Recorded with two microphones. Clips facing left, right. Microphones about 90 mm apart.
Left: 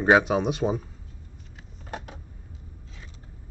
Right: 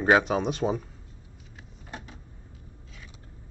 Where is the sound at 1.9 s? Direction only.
70° left (ahead or behind).